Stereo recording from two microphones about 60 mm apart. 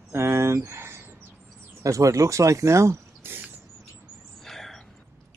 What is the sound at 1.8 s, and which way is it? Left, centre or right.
Speech, right.